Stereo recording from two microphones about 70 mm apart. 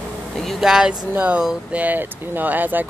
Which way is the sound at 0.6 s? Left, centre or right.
Centre.